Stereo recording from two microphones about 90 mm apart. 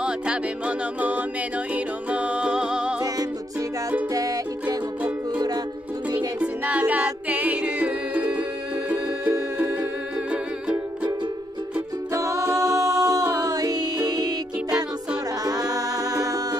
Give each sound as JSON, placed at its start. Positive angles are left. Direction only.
{"t": 0.0, "sound": "music", "side_deg": -15}
{"t": 4.1, "sound": "music", "side_deg": -40}
{"t": 6.0, "sound": "music", "side_deg": -15}
{"t": 10.3, "sound": "music", "side_deg": -15}
{"t": 12.1, "sound": "music", "side_deg": -35}
{"t": 15.4, "sound": "music", "side_deg": -40}